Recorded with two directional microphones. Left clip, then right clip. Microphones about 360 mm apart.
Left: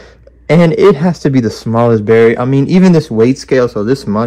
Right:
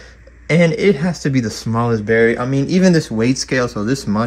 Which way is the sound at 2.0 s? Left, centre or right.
Left.